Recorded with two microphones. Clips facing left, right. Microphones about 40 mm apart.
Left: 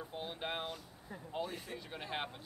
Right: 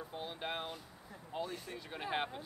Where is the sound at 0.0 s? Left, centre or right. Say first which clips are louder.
Even; centre.